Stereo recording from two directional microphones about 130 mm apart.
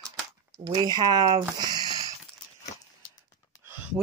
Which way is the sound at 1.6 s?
30° right (ahead or behind).